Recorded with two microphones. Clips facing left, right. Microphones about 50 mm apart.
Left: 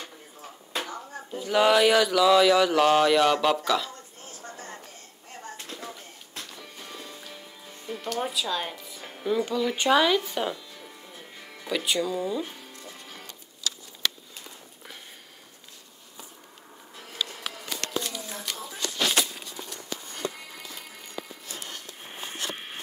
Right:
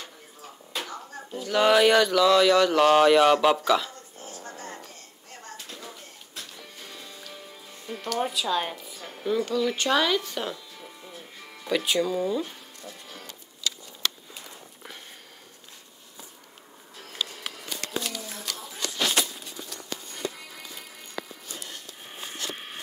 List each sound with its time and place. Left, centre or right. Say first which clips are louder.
0.7 s speech: left 2 dB; centre
6.9 s music: left 5 dB; left
7.8 s music: left 1 dB; centre
8.2 s speech: right 3 dB; centre
9.2 s speech: right 1 dB; centre